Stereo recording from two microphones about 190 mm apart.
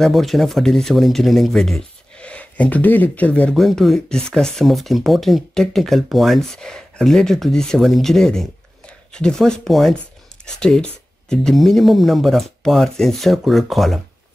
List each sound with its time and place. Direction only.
0.0 s speech: centre (ahead or behind)